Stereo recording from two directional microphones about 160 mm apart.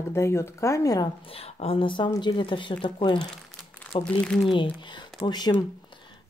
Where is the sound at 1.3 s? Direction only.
40° left (ahead or behind).